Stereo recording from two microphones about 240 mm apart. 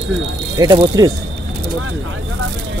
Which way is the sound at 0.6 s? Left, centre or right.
Centre.